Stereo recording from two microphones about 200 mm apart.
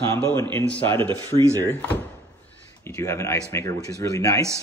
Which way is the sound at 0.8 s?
25° right (ahead or behind).